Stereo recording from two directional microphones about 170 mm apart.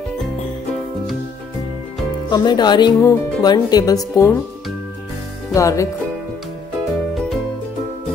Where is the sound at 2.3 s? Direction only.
25° left (ahead or behind).